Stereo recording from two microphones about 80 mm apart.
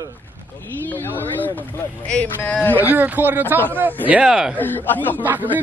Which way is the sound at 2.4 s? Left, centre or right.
Left.